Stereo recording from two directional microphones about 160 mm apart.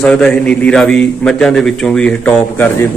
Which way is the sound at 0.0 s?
5° left (ahead or behind).